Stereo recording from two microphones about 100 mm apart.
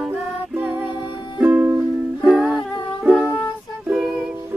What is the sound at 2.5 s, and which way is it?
Music, 50° left (ahead or behind).